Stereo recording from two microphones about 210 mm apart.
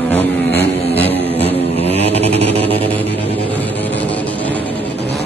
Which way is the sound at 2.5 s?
30° right (ahead or behind).